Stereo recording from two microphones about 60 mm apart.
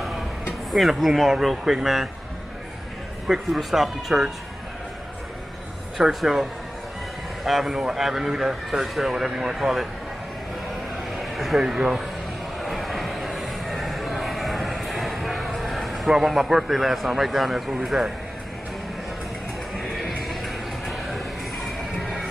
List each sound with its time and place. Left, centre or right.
0.7 s speech: centre
3.3 s speech: centre
5.9 s speech: centre
7.4 s speech: centre
11.1 s a sound: centre
19.7 s music: centre